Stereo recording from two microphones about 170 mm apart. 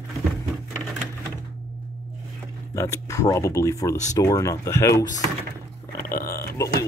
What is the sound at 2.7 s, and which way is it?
Speech, 20° left (ahead or behind).